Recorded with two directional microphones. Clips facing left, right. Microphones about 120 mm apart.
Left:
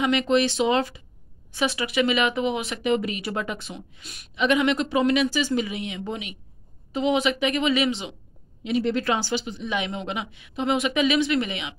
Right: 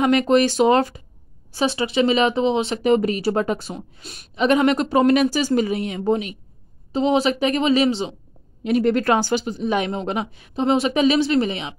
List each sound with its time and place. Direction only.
0.0 s speech: 45° right (ahead or behind)
1.5 s speech: 30° right (ahead or behind)
8.6 s speech: 50° right (ahead or behind); by 11.7 s 35° right (ahead or behind)